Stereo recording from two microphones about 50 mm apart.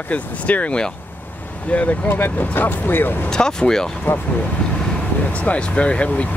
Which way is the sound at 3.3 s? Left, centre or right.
Centre.